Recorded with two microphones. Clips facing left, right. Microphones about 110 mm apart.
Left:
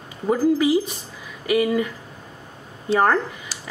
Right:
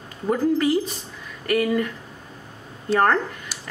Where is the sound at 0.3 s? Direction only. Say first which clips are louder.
Left 2 dB; 5° left (ahead or behind).